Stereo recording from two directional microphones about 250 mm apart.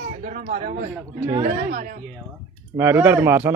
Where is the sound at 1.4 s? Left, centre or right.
Right.